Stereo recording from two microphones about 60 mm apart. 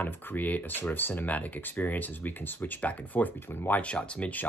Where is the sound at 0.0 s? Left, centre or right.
Left.